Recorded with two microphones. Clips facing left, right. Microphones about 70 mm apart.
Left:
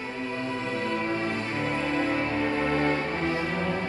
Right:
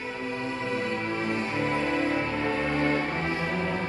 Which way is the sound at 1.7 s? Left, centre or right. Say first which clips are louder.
Even; right.